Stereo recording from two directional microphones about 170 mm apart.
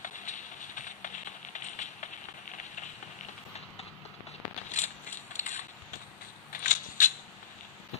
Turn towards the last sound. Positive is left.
turn(degrees=50)  # may be behind; listen again after turning